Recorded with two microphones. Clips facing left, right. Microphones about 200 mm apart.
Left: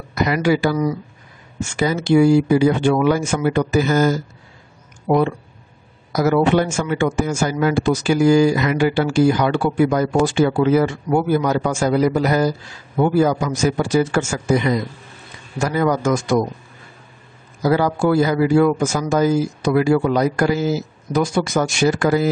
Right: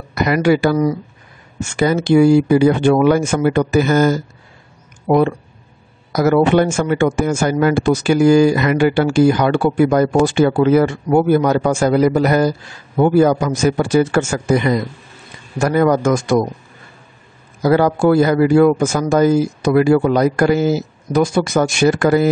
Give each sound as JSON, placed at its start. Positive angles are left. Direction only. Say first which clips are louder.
{"t": 0.1, "sound": "a man's voice", "louder": "right 3 dB", "side_deg": -60}
{"t": 17.6, "sound": "speech", "louder": "right 4 dB", "side_deg": -55}